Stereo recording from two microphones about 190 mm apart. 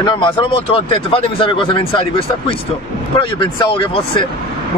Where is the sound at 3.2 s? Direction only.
25° left (ahead or behind).